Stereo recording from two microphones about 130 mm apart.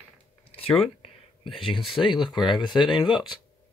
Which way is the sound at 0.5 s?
45° left (ahead or behind).